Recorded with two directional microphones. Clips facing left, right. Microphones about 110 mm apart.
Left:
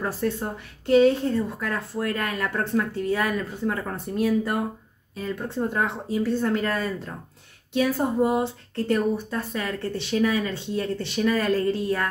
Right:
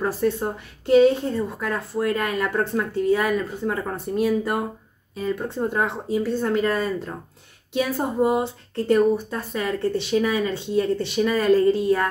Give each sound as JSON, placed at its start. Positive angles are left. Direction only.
{"t": 0.0, "sound": "speech", "side_deg": -15}